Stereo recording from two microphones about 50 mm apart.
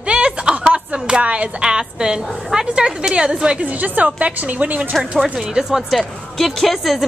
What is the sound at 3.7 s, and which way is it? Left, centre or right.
A woman's voice, right.